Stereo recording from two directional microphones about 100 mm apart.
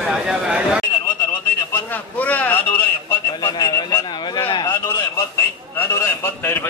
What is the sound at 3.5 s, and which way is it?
Speech, 40° left (ahead or behind).